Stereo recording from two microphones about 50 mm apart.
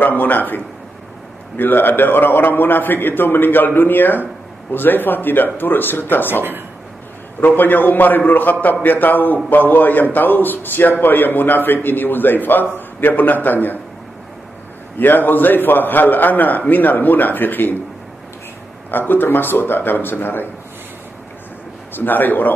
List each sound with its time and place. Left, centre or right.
0.0 s a man's voice: left
1.6 s a man's voice: left
15.0 s a man's voice: left
18.9 s a man's voice: left
21.9 s a man's voice: left